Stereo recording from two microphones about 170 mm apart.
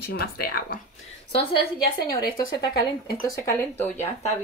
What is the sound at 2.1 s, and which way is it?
Speech, 20° left (ahead or behind).